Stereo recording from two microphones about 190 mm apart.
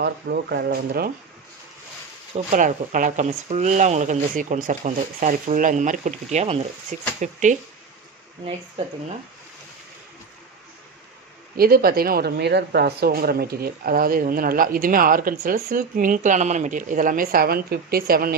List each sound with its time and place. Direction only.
0.0 s speech: 60° right (ahead or behind)
2.5 s speech: 45° right (ahead or behind)
11.5 s a woman's voice: 50° right (ahead or behind)